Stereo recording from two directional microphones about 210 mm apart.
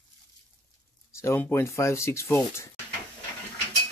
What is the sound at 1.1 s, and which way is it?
Speech, 10° left (ahead or behind).